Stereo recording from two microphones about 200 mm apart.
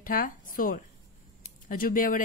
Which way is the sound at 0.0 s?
45° left (ahead or behind).